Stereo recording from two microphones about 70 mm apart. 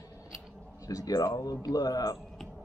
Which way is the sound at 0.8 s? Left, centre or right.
Left.